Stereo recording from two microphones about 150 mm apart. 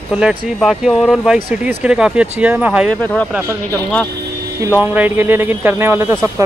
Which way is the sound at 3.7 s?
10° left (ahead or behind).